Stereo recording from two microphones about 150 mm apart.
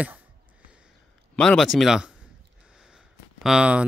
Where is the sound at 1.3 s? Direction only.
5° left (ahead or behind).